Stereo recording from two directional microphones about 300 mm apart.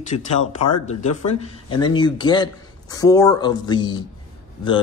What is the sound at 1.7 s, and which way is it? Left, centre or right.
Speech, centre.